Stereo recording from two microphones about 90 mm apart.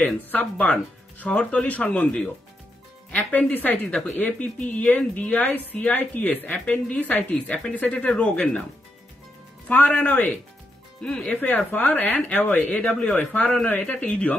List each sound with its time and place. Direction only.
0.0 s speech: 20° left (ahead or behind)
9.7 s speech: 15° left (ahead or behind)